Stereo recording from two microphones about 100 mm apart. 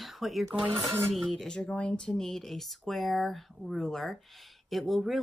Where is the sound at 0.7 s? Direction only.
25° right (ahead or behind).